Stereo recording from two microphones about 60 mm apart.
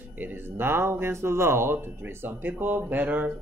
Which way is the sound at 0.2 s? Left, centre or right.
Right.